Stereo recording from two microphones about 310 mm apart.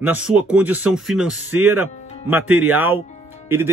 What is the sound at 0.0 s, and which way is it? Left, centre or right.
Speech, centre.